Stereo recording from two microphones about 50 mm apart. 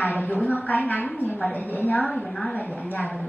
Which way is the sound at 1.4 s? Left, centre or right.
Left.